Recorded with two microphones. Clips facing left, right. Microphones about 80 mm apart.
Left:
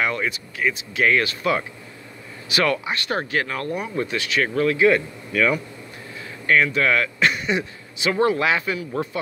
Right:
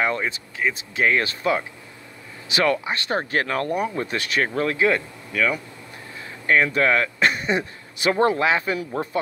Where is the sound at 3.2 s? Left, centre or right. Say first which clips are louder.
Right 2 dB; right.